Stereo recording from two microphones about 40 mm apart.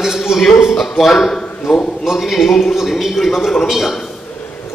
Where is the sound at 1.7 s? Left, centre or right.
Centre.